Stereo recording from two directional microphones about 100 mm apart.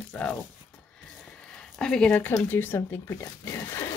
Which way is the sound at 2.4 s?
20° left (ahead or behind).